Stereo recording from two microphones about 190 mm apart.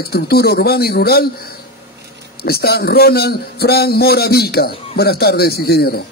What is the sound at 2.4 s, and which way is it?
A man's voice, 55° left (ahead or behind).